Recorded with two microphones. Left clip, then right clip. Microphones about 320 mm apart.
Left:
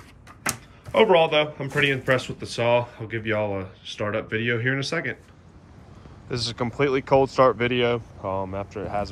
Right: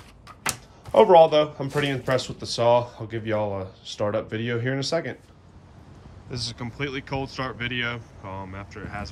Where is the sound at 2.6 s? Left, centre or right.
Centre.